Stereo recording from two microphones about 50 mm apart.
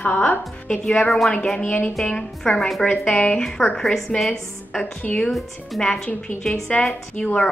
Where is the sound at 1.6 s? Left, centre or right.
Left.